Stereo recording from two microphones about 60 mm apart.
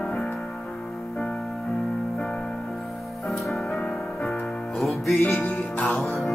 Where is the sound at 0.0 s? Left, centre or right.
Centre.